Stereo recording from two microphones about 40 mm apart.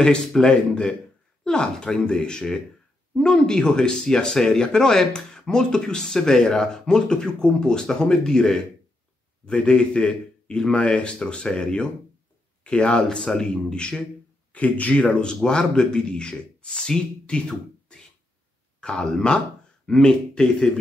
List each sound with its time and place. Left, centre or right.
0.4 s a man's voice: left
14.5 s a man's voice: left